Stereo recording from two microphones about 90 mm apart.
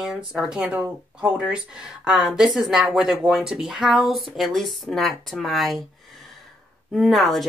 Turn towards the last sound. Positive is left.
turn(degrees=0)  # may be behind; listen again after turning